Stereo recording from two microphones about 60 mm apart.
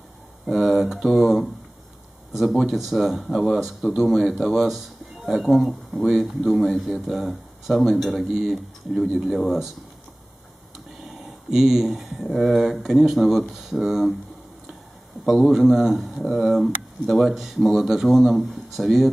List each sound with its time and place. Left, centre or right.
0.5 s speech: centre
11.0 s a sound: centre
12.2 s speech: centre
15.5 s speech: centre